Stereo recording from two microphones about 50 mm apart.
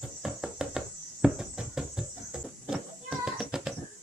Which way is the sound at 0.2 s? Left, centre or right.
Centre.